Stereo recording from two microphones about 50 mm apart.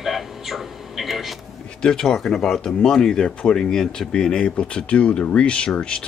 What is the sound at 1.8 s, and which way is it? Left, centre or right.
Speech, centre.